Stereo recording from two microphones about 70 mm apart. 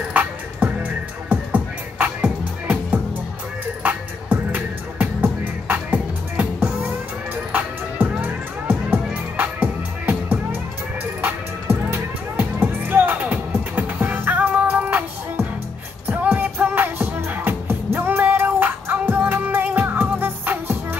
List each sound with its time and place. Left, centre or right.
0.1 s music: right
3.8 s music: right
8.2 s music: right